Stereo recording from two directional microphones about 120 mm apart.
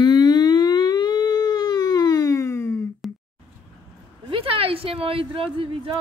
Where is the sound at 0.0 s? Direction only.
35° left (ahead or behind).